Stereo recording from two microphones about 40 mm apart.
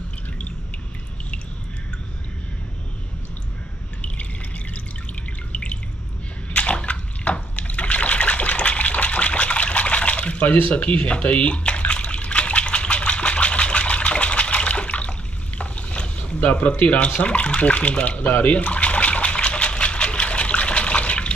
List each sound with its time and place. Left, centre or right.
5.5 s drip: left
6.5 s water: left
16.3 s speech: left
18.3 s water: left